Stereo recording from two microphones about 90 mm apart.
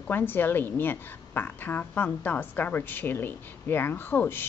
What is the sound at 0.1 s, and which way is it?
A woman's voice, 25° left (ahead or behind).